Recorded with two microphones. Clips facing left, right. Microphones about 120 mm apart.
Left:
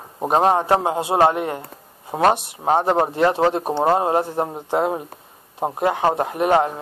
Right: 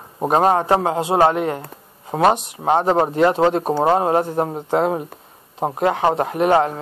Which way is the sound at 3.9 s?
20° left (ahead or behind).